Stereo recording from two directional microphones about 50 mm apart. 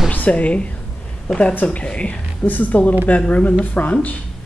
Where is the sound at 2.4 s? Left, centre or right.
Left.